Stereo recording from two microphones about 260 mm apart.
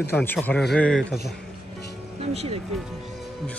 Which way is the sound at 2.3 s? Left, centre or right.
Right.